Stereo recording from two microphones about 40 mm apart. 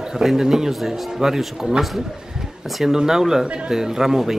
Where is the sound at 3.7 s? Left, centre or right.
Centre.